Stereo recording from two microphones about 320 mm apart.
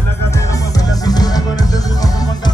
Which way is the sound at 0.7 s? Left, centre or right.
Centre.